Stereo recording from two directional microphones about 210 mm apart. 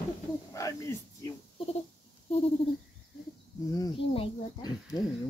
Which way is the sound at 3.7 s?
15° left (ahead or behind).